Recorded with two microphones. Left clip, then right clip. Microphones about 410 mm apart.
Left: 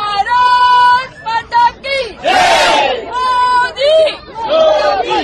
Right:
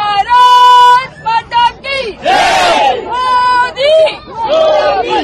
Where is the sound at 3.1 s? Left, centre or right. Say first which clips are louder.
Left 1 dB; right.